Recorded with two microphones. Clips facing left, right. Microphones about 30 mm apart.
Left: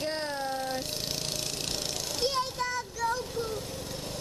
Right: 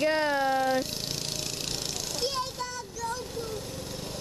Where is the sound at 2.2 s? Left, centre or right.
Centre.